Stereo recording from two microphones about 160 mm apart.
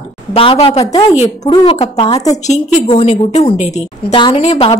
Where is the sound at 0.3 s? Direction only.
35° left (ahead or behind).